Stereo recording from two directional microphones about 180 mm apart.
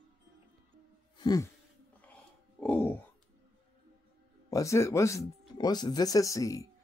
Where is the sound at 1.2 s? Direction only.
20° left (ahead or behind).